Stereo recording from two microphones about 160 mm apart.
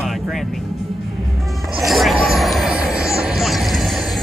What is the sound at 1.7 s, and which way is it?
Music, centre (ahead or behind).